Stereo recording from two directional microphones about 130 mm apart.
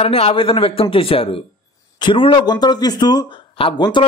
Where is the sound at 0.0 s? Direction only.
50° left (ahead or behind).